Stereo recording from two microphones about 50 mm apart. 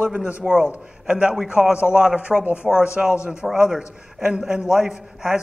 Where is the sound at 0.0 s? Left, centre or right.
Right.